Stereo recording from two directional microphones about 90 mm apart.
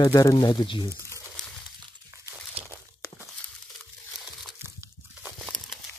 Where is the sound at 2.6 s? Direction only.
25° right (ahead or behind).